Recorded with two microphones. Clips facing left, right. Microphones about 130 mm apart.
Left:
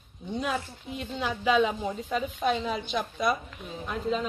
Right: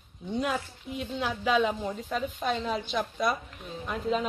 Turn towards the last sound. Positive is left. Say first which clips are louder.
# even
turn(degrees=0)  # may be behind; listen again after turning